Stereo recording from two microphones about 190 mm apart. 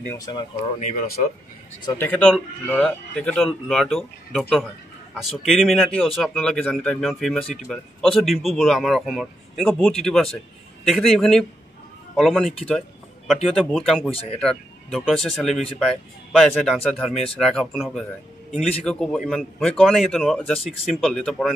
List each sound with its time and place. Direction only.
0.1 s speech: 20° left (ahead or behind)
0.7 s speech: 40° left (ahead or behind)
1.8 s speech: 20° left (ahead or behind)
2.0 s speech: 5° left (ahead or behind)
13.6 s speech: centre (ahead or behind)